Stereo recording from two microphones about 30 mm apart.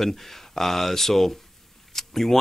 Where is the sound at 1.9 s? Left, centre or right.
Centre.